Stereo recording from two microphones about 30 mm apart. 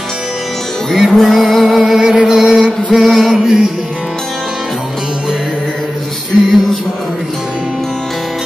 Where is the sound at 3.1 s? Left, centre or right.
Centre.